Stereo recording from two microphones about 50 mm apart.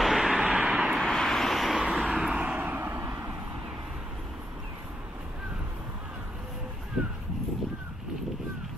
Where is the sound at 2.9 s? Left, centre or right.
Right.